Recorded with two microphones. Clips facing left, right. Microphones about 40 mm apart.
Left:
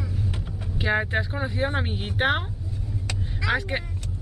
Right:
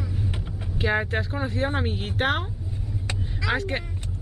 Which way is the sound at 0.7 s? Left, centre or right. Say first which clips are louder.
Even; centre.